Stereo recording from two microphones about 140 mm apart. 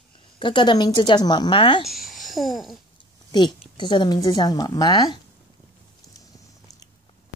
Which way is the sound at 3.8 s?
35° left (ahead or behind).